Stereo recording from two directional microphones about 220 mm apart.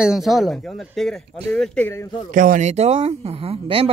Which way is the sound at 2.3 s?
35° right (ahead or behind).